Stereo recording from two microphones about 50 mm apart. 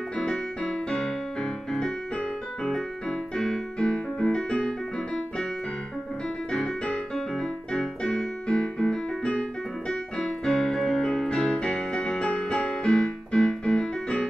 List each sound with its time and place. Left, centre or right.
0.2 s music: centre
6.5 s music: centre
9.3 s keyboard: centre
10.2 s music: centre